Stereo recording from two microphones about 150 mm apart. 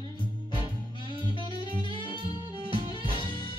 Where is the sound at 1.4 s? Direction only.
30° left (ahead or behind).